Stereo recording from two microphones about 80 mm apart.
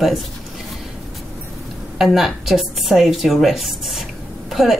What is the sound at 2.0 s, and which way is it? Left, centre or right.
Speech, centre.